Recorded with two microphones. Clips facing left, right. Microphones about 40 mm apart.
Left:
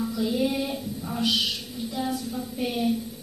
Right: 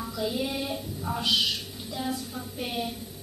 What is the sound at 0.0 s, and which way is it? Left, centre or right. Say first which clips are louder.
Music: left 5 dB; centre.